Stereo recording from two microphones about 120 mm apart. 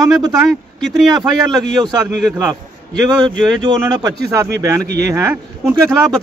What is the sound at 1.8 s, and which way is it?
Speech, 35° right (ahead or behind).